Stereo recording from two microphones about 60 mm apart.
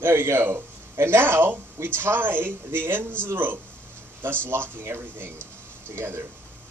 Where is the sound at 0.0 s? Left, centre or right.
Right.